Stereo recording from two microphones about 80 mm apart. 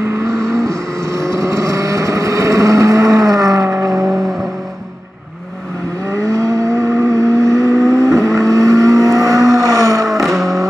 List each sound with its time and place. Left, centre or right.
0.3 s vehicle: centre
1.1 s vehicle: right
6.1 s vehicle: right
10.2 s vehicle: centre